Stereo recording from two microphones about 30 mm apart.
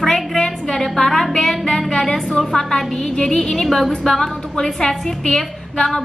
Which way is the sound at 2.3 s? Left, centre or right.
Centre.